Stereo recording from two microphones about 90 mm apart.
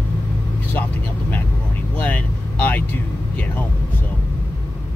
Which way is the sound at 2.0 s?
15° left (ahead or behind).